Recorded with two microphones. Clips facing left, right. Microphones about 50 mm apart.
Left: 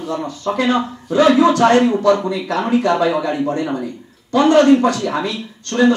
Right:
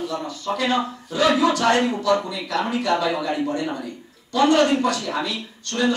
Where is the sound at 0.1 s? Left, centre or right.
Left.